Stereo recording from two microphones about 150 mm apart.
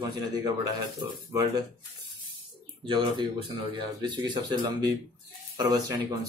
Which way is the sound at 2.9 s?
35° right (ahead or behind).